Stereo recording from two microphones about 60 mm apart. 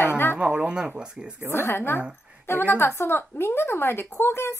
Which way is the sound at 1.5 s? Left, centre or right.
Left.